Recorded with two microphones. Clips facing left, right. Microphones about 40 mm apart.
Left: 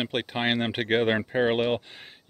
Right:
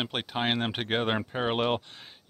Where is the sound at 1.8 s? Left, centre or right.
Centre.